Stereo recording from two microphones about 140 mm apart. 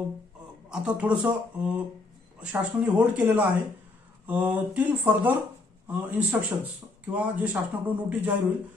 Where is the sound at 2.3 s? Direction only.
10° right (ahead or behind).